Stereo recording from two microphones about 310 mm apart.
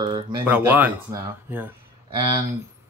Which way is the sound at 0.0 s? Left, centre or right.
Centre.